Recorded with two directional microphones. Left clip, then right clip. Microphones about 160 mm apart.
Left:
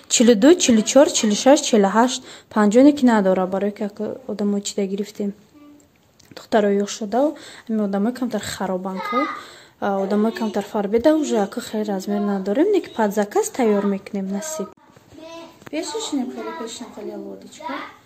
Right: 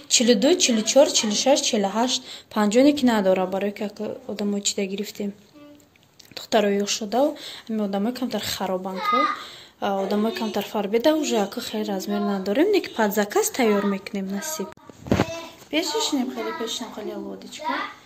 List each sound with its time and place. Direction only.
0.2 s speech: 50° left (ahead or behind)
2.5 s speech: 35° left (ahead or behind)
6.3 s speech: 30° left (ahead or behind)
15.7 s speech: centre (ahead or behind)